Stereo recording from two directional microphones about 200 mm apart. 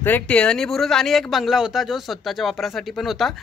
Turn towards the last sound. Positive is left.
turn(degrees=0)  # may be behind; listen again after turning